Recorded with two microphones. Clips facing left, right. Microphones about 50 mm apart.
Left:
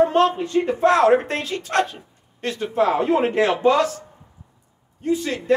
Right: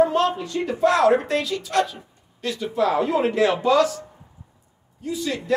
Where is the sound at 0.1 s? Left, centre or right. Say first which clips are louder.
Left 4 dB; left.